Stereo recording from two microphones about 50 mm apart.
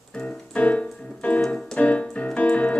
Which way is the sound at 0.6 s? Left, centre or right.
Left.